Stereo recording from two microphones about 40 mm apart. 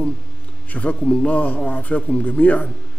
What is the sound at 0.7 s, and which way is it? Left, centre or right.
A man's voice, left.